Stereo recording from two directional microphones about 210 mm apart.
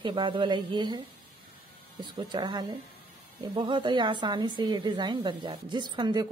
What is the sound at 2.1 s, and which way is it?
A woman's voice, 20° right (ahead or behind).